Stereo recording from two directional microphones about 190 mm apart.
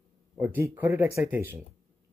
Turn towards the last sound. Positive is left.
turn(degrees=-10)  # may be behind; listen again after turning